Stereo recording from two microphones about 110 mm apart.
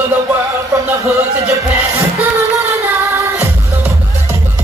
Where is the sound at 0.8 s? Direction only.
25° right (ahead or behind).